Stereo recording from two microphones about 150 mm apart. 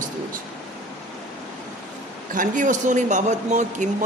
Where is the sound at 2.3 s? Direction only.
60° right (ahead or behind).